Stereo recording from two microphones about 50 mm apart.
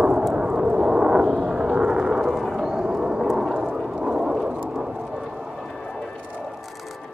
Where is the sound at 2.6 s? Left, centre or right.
Centre.